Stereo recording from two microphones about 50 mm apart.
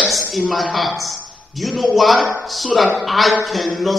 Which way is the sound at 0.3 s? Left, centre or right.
Centre.